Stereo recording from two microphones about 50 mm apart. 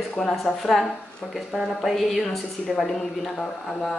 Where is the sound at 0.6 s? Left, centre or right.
Centre.